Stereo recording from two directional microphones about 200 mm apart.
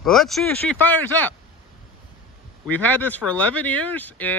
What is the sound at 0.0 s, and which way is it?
Speech, centre (ahead or behind).